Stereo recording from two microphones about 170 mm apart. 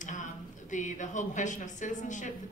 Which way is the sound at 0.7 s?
45° left (ahead or behind).